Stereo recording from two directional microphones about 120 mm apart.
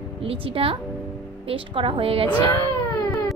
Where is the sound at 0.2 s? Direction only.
50° right (ahead or behind).